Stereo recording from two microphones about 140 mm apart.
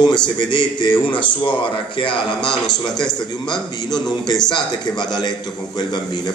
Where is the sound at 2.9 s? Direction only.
5° left (ahead or behind).